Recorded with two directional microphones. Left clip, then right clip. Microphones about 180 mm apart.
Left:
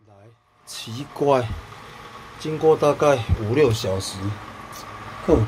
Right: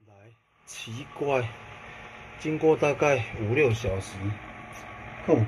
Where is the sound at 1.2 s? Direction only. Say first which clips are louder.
Left 8 dB; 30° left (ahead or behind).